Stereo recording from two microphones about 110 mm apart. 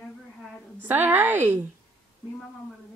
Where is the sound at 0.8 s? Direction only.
20° right (ahead or behind).